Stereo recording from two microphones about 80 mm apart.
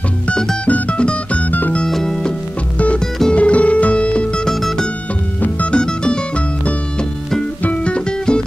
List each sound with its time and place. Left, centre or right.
0.3 s music: centre
1.9 s music: centre
4.6 s music: centre
5.4 s music: centre